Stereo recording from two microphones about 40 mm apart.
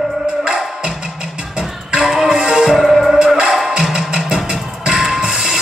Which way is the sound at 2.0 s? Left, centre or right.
Centre.